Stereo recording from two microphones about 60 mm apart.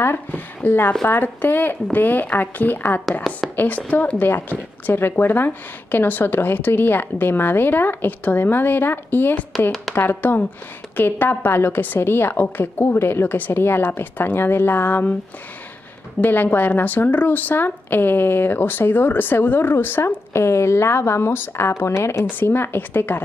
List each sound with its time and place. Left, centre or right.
0.0 s a woman's voice: left
3.1 s a woman's voice: centre
3.5 s a woman's voice: left
16.2 s a woman's voice: left
22.3 s a woman's voice: left